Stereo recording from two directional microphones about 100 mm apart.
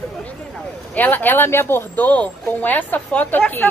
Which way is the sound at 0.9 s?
20° left (ahead or behind).